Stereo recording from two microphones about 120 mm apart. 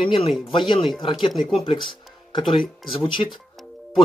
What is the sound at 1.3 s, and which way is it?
Speech, centre (ahead or behind).